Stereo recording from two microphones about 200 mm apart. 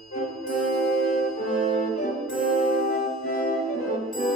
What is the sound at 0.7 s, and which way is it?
Music, 45° left (ahead or behind).